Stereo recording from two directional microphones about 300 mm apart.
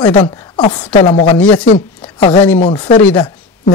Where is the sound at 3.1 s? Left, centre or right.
Centre.